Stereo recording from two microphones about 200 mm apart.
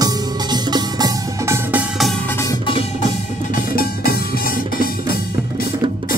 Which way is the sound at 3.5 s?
50° left (ahead or behind).